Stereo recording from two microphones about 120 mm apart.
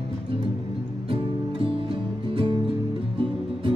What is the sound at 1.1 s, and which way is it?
Music, 45° right (ahead or behind).